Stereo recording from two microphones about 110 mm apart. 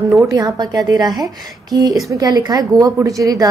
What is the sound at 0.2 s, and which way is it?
A woman's voice, 35° right (ahead or behind).